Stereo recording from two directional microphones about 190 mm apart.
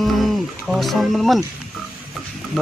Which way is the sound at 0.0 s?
Centre (ahead or behind).